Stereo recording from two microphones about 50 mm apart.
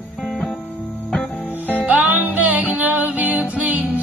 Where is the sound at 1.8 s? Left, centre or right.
Right.